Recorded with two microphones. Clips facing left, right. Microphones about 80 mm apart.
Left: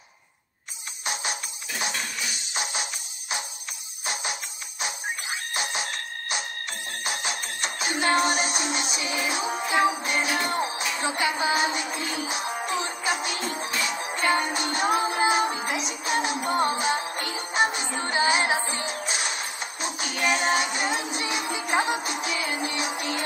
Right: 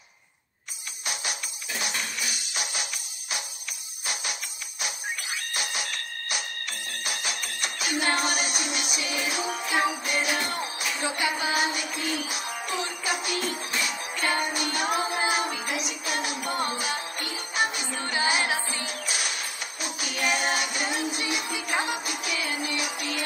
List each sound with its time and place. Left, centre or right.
1.0 s music: left